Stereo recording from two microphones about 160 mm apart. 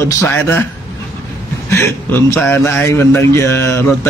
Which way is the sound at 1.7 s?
15° left (ahead or behind).